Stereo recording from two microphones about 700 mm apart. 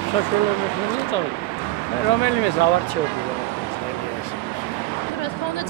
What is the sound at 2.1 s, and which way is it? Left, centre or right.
Speech, left.